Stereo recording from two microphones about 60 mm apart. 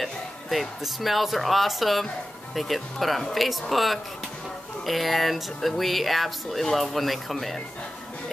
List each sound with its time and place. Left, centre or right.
0.0 s speech: centre